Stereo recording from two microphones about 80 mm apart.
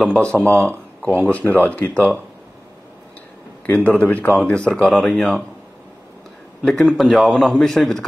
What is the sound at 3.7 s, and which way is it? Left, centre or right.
Speech, centre.